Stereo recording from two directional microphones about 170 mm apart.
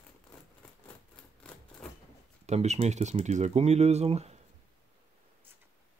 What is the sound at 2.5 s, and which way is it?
Speech, 40° right (ahead or behind).